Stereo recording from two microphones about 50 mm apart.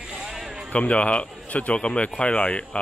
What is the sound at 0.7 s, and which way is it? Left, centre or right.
Speech, left.